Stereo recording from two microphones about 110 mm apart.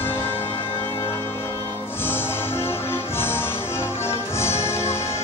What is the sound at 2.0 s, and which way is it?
Music, 20° left (ahead or behind).